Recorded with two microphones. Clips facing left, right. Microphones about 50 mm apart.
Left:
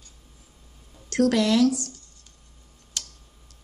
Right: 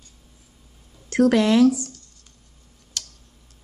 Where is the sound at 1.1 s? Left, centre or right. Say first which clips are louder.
Right 4 dB; right.